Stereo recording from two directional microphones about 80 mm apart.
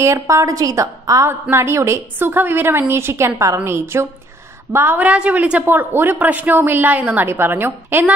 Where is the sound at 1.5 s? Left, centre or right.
Right.